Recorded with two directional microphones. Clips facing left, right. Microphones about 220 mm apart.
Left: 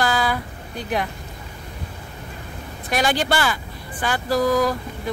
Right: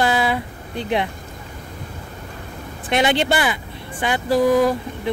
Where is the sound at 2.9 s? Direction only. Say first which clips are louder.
Right 3 dB; 25° right (ahead or behind).